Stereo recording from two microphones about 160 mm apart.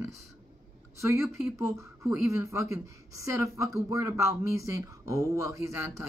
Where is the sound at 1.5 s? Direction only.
20° right (ahead or behind).